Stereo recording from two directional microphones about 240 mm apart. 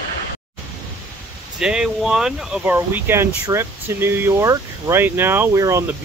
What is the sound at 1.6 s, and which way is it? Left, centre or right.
Speech, centre.